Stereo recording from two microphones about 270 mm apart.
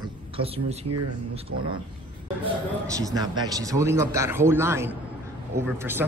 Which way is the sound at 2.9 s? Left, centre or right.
Centre.